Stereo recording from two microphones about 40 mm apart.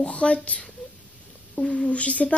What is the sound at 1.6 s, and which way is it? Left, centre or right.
Speech, left.